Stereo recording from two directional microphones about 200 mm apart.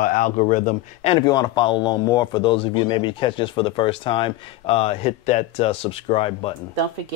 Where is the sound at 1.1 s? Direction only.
20° left (ahead or behind).